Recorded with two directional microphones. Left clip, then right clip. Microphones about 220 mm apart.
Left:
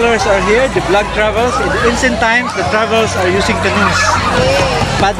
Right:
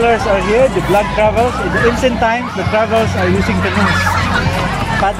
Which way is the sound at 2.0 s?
5° right (ahead or behind).